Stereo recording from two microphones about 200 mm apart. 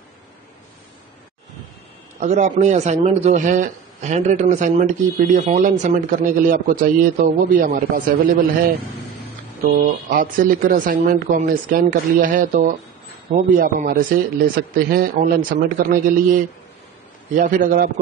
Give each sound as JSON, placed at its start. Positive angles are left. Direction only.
{"t": 2.1, "sound": "a man's voice", "side_deg": -35}
{"t": 9.8, "sound": "a man's voice", "side_deg": -45}